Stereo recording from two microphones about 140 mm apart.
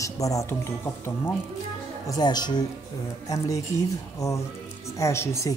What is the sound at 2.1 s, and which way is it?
Speech, 30° left (ahead or behind).